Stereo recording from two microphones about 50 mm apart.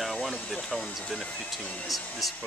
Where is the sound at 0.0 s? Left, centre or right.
Centre.